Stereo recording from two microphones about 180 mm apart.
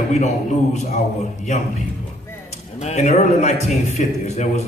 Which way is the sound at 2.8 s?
40° left (ahead or behind).